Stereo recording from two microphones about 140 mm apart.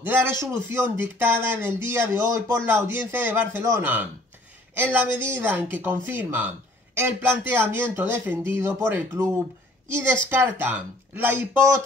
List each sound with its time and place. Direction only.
0.0 s speech: 15° right (ahead or behind)
10.3 s speech: 15° right (ahead or behind)